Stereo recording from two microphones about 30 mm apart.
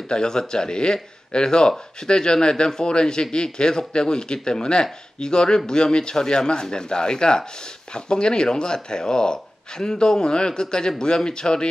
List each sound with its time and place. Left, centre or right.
0.1 s speech: left